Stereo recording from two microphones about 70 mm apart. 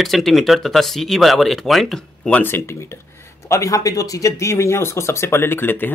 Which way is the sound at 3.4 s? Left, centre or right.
Left.